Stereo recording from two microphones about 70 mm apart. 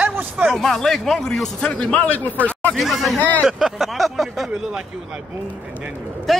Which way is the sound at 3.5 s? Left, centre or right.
Centre.